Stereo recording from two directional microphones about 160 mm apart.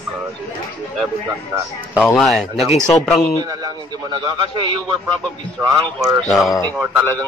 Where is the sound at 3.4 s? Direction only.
25° right (ahead or behind).